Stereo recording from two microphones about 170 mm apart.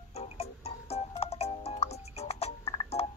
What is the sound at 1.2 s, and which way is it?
Music, 35° left (ahead or behind).